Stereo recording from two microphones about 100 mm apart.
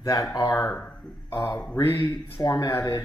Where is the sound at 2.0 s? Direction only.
40° left (ahead or behind).